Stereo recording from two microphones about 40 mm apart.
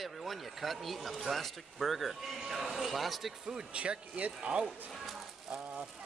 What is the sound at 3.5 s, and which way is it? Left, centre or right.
Speech, right.